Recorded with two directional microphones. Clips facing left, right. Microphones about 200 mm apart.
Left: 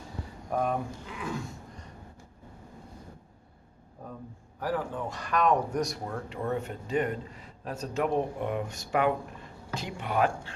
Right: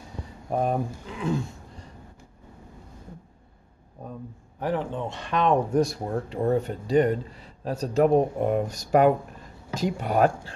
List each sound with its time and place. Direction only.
0.5 s speech: 30° right (ahead or behind)
4.6 s speech: 25° right (ahead or behind); by 10.5 s 40° right (ahead or behind)